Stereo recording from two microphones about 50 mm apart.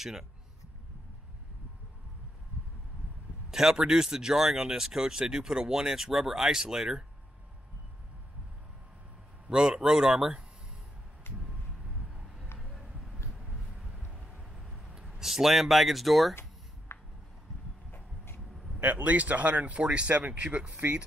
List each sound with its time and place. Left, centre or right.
0.0 s speech: centre
3.4 s speech: centre
9.5 s speech: centre
11.3 s vehicle: left
12.1 s a sound: centre
13.4 s vehicle: centre
14.9 s speech: centre
16.9 s a sound: left
17.9 s vehicle: left
18.8 s speech: right